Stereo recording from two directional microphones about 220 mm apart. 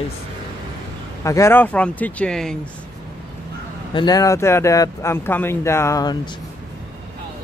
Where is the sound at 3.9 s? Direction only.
20° left (ahead or behind).